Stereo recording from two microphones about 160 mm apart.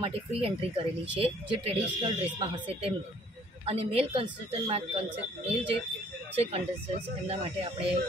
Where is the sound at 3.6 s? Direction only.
40° right (ahead or behind).